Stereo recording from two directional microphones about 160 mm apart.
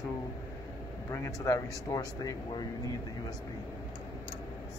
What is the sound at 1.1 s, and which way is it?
Speech, 20° left (ahead or behind).